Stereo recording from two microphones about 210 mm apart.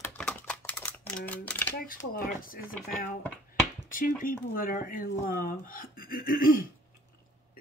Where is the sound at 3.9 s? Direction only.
40° left (ahead or behind).